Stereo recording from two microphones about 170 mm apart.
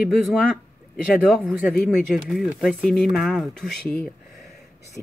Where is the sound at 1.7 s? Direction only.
Centre (ahead or behind).